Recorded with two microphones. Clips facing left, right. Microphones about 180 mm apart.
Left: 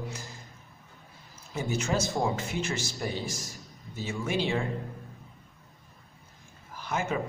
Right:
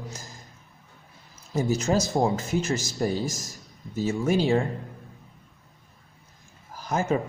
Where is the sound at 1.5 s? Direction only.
40° right (ahead or behind).